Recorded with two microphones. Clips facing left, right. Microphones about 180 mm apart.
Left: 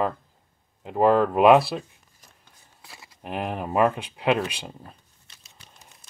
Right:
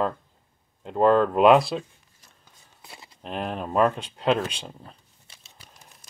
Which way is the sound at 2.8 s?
25° right (ahead or behind).